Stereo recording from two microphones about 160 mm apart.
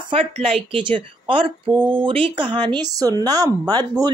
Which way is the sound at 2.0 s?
30° right (ahead or behind).